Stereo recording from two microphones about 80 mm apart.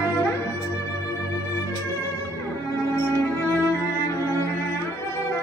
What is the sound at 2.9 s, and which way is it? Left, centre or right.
Music, left.